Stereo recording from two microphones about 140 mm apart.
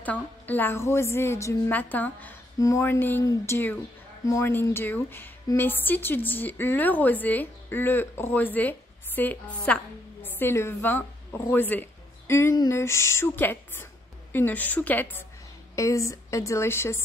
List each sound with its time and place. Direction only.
0.0 s a woman's voice: 10° left (ahead or behind)